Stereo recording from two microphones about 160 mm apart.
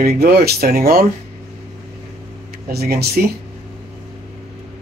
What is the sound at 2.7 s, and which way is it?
Speech, 80° right.